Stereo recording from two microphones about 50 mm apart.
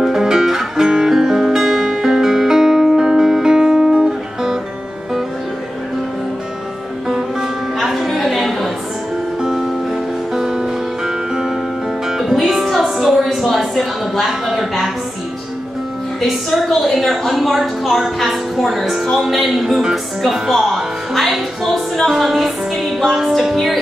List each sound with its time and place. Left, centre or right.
0.0 s music: centre
7.1 s music: centre
7.8 s a sound: centre
9.4 s music: centre
16.2 s a sound: centre
20.3 s music: centre